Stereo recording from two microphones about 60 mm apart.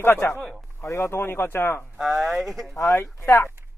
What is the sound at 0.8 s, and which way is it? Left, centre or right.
Speech, left.